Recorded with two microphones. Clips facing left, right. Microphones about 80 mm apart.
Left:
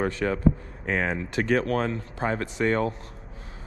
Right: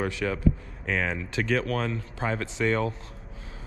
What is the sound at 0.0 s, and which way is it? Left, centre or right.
Speech, left.